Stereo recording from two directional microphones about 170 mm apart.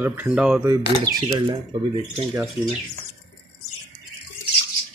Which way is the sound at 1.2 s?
20° right (ahead or behind).